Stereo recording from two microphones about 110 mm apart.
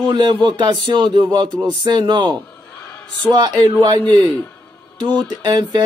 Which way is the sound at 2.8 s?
10° left (ahead or behind).